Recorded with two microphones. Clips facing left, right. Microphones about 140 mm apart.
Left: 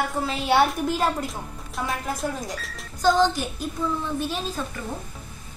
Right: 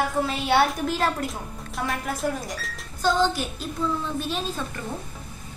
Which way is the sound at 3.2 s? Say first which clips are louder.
Left 2 dB; 15° left (ahead or behind).